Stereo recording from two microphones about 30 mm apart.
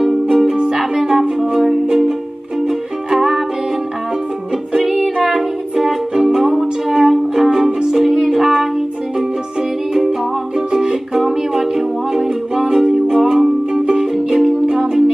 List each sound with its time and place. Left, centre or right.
0.0 s music: centre
3.2 s music: centre
4.7 s music: centre
9.9 s music: centre
11.1 s music: centre